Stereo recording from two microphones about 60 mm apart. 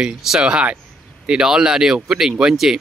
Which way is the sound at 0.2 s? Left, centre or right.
Centre.